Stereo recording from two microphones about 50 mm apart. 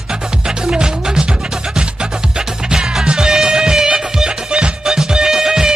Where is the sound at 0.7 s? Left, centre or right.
Centre.